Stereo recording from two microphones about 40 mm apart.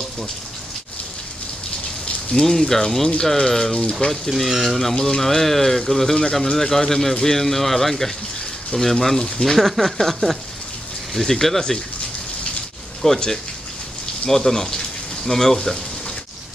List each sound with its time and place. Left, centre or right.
2.3 s speech: left
2.7 s speech: centre
13.0 s speech: centre